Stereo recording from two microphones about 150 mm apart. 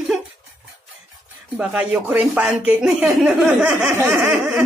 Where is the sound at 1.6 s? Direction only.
10° right (ahead or behind).